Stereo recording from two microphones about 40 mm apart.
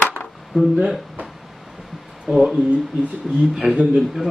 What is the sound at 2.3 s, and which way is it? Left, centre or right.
Speech, right.